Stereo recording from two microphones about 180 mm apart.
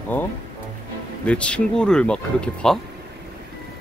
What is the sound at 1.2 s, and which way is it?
Speech, 5° left (ahead or behind).